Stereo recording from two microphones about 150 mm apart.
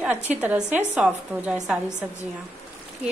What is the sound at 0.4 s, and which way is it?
Speech, 10° right (ahead or behind).